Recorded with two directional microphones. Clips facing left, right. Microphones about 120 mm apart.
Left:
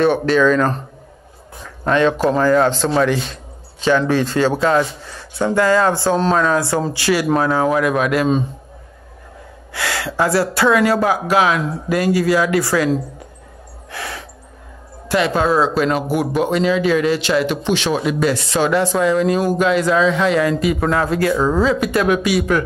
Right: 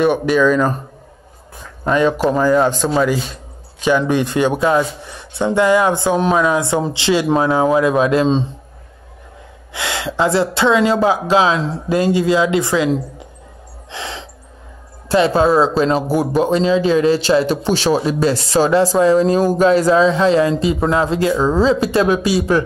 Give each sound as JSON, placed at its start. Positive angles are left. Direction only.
{"t": 0.0, "sound": "a man's voice", "side_deg": -10}
{"t": 1.9, "sound": "a man's voice", "side_deg": -10}
{"t": 9.7, "sound": "speech", "side_deg": -20}
{"t": 13.8, "sound": "gasp", "side_deg": -20}
{"t": 15.0, "sound": "speech", "side_deg": -30}